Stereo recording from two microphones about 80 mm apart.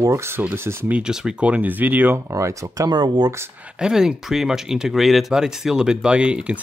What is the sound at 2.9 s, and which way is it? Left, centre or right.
Speech, right.